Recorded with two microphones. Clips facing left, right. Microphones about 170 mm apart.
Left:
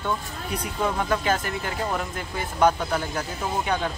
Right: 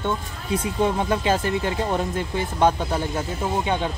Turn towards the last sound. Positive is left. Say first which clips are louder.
# right 2 dB
turn(degrees=-25)  # may be behind; listen again after turning